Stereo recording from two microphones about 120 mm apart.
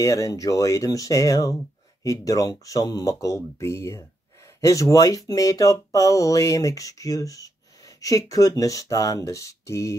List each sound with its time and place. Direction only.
0.0 s speech: 30° left (ahead or behind)